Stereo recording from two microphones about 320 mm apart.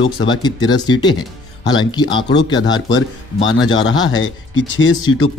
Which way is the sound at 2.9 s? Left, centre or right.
Left.